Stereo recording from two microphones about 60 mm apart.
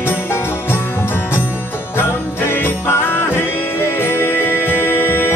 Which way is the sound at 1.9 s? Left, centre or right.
Left.